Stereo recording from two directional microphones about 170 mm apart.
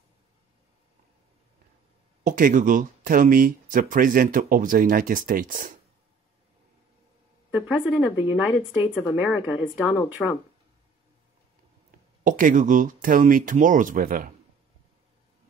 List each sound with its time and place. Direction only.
2.2 s speech: 50° right (ahead or behind)
7.5 s a woman's voice: 5° right (ahead or behind)
9.8 s speech: 20° left (ahead or behind)
12.2 s speech: 50° right (ahead or behind)